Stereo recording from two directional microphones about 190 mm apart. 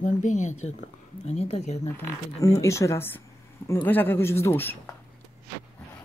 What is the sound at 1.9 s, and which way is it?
Speech, 15° left (ahead or behind).